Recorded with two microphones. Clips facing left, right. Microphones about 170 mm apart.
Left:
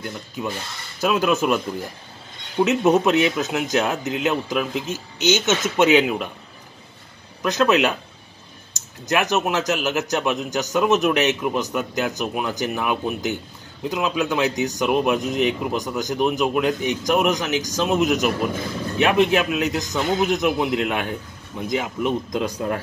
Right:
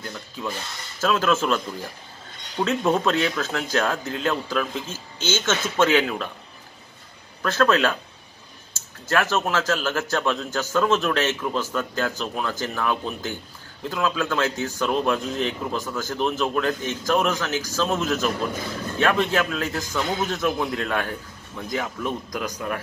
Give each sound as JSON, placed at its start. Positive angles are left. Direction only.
{"t": 1.0, "sound": "a man's voice", "side_deg": 15}
{"t": 2.6, "sound": "a man's voice", "side_deg": 20}
{"t": 7.4, "sound": "a man's voice", "side_deg": 15}
{"t": 9.1, "sound": "a man's voice", "side_deg": 15}